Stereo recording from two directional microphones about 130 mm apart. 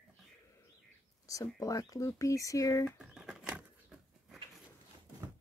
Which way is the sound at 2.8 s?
5° right (ahead or behind).